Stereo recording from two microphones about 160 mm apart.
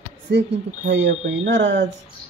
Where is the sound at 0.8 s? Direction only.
55° right (ahead or behind).